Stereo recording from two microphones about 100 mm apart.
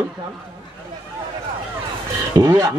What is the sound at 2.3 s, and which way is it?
Speech, 35° right (ahead or behind).